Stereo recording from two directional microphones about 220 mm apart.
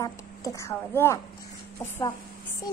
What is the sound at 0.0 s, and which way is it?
A woman's voice, 15° left (ahead or behind).